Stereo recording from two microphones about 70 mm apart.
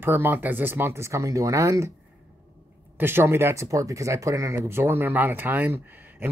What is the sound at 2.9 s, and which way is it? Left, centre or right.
Speech, right.